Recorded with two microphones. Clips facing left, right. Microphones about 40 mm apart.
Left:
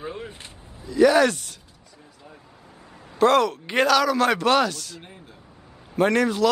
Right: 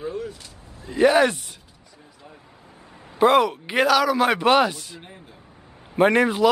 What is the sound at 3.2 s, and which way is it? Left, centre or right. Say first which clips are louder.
A man's voice: right 1 dB; centre.